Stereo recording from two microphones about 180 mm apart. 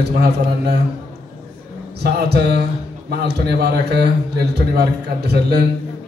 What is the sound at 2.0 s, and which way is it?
A man's voice, 65° right (ahead or behind).